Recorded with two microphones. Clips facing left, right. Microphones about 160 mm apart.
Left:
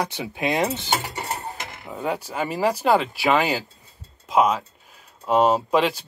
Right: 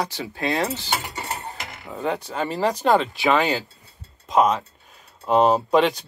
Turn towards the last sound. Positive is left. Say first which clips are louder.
# right 2 dB
turn(degrees=0)  # may be behind; listen again after turning